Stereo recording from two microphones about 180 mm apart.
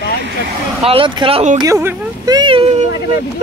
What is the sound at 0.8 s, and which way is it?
Speech, 30° right (ahead or behind).